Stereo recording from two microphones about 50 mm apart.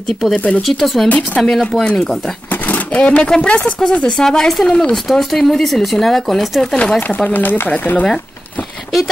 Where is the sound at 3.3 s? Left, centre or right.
Centre.